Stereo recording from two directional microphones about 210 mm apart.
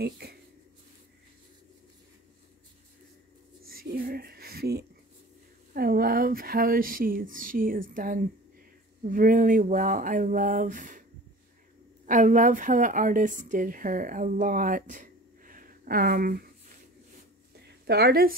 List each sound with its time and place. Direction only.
0.0 s speech: 50° right (ahead or behind)
3.6 s a sound: 45° right (ahead or behind)
5.7 s a woman's voice: 45° right (ahead or behind)
12.1 s a woman's voice: 35° right (ahead or behind)
17.6 s a woman's voice: 50° right (ahead or behind)